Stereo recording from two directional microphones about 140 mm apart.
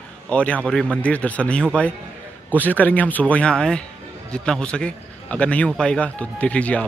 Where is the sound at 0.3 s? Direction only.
10° left (ahead or behind).